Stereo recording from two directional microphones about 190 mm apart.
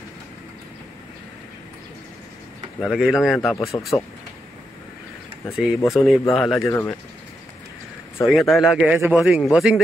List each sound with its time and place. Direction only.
2.8 s a man's voice: centre (ahead or behind)
3.5 s speech: 15° left (ahead or behind)
5.5 s a man's voice: 5° right (ahead or behind)
8.3 s a man's voice: centre (ahead or behind)